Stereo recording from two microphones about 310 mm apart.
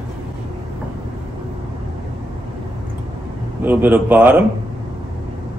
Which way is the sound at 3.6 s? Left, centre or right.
Centre.